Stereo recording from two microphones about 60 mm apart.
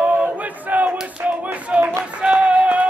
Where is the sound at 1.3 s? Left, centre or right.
Right.